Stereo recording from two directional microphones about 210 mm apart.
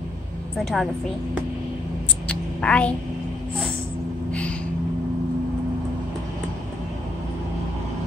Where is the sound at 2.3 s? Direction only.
5° left (ahead or behind).